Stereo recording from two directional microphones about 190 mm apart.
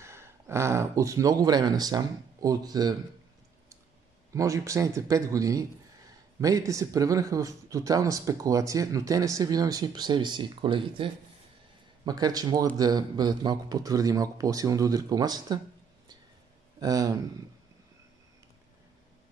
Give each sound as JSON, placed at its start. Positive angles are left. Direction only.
{"t": 0.0, "sound": "speech", "side_deg": -15}
{"t": 4.3, "sound": "a man's voice", "side_deg": -15}
{"t": 16.8, "sound": "a man's voice", "side_deg": -20}